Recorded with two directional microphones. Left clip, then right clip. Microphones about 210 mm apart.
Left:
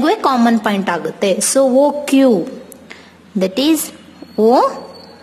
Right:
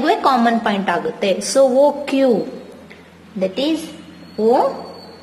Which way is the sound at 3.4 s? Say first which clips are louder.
Left 4 dB; 40° left (ahead or behind).